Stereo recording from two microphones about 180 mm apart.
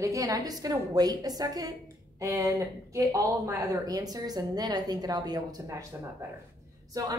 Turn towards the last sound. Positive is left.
turn(degrees=-20)  # may be behind; listen again after turning